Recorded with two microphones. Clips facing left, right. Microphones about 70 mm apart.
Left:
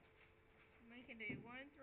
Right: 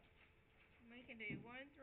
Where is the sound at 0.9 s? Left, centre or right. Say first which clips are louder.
Even; centre.